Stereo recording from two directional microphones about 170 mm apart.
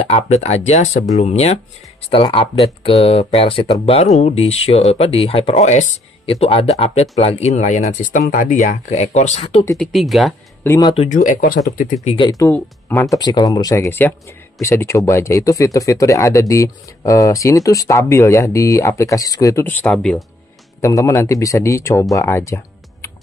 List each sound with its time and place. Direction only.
0.0 s speech: 40° left (ahead or behind)
9.8 s speech: centre (ahead or behind)
10.6 s speech: 20° left (ahead or behind)
11.1 s speech: 55° left (ahead or behind)
11.8 s speech: 40° left (ahead or behind)
12.2 s speech: 20° left (ahead or behind)
13.1 s speech: 20° left (ahead or behind); by 20.2 s 5° left (ahead or behind)
20.8 s speech: 20° left (ahead or behind)